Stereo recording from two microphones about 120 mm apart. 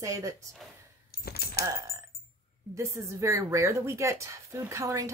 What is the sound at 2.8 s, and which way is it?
Speech, 25° right (ahead or behind).